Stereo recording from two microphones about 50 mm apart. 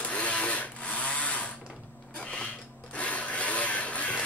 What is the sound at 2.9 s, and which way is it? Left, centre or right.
Rub, left.